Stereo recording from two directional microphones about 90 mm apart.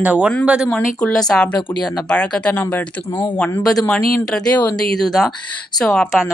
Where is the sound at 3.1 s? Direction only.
65° left (ahead or behind).